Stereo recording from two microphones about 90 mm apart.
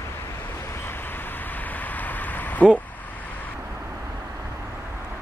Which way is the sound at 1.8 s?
20° left (ahead or behind).